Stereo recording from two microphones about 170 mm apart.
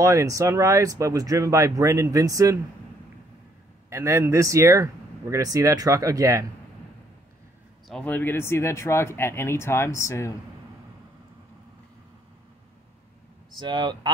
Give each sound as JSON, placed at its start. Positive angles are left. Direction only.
{"t": 0.0, "sound": "speech", "side_deg": -20}
{"t": 3.9, "sound": "speech", "side_deg": -15}
{"t": 7.9, "sound": "speech", "side_deg": 10}
{"t": 13.6, "sound": "speech", "side_deg": -25}